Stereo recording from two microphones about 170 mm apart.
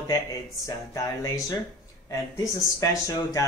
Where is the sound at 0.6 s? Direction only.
20° left (ahead or behind).